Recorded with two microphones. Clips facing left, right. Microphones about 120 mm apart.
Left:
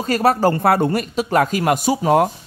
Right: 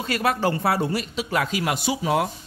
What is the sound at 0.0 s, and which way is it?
Speech, 40° left (ahead or behind).